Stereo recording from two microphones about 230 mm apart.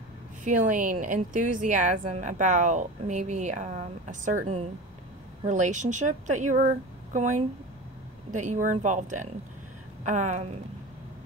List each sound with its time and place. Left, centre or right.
0.4 s a woman's voice: right